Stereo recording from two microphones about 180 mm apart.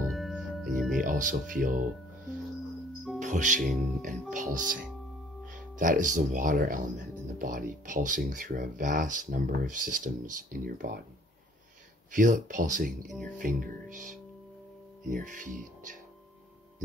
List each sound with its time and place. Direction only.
0.1 s music: centre (ahead or behind)
1.0 s speech: 45° right (ahead or behind)
3.2 s speech: 45° right (ahead or behind)
12.1 s speech: 45° right (ahead or behind)